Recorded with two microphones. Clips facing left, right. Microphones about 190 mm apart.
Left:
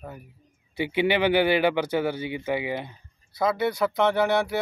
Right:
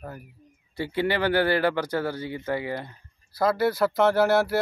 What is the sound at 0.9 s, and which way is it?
Speech, 20° left (ahead or behind).